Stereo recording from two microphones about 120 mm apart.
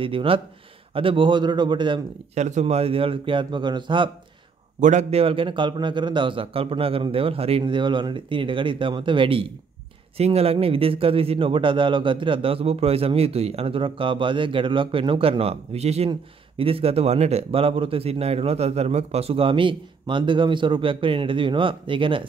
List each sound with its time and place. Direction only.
0.0 s a man's voice: 50° right (ahead or behind)
2.3 s speech: 75° right (ahead or behind)
2.6 s a man's voice: 55° right (ahead or behind)
4.7 s a man's voice: 90° right
5.2 s a man's voice: 50° right (ahead or behind)
16.1 s a man's voice: 50° right (ahead or behind)